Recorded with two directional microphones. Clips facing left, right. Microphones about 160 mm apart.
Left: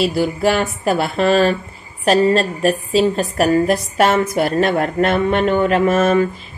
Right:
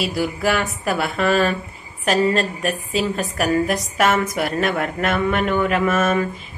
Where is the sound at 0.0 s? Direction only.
30° left (ahead or behind).